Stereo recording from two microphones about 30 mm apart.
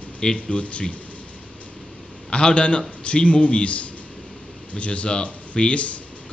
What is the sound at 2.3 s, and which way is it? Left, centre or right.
Speech, left.